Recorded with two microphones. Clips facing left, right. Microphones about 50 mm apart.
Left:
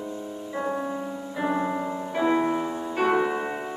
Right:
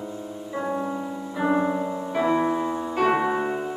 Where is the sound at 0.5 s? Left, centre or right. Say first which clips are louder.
Right 1 dB; centre.